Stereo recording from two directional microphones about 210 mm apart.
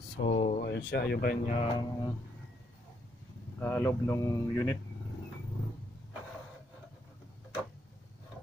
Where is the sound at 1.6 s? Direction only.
20° left (ahead or behind).